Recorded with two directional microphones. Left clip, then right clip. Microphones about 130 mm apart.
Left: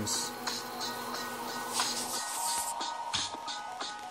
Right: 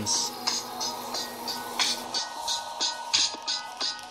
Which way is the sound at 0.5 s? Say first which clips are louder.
Right 6 dB; 15° right (ahead or behind).